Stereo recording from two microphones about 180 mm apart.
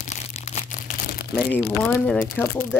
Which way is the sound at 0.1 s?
40° left (ahead or behind).